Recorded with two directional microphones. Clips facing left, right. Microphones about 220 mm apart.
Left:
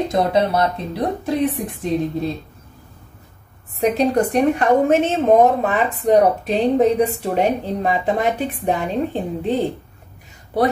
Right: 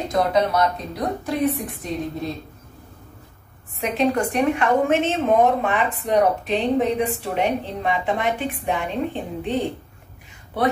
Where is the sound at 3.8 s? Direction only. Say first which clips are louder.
Left 4 dB; 35° left (ahead or behind).